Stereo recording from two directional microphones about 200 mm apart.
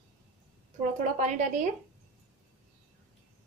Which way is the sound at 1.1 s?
40° right (ahead or behind).